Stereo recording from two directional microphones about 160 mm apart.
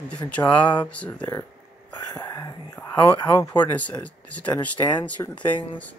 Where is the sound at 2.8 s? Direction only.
10° left (ahead or behind).